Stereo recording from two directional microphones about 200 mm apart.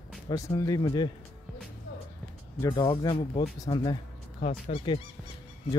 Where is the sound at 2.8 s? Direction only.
25° left (ahead or behind).